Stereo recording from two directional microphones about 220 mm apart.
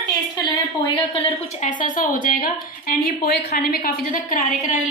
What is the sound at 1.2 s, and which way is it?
A woman's voice, 25° left (ahead or behind).